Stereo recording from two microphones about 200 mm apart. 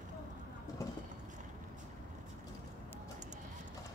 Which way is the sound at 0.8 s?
15° left (ahead or behind).